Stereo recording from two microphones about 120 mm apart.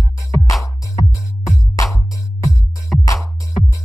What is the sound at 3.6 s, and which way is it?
Music, 65° left (ahead or behind).